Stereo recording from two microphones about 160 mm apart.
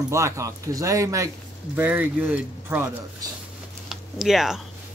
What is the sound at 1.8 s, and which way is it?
Speech, 10° right (ahead or behind).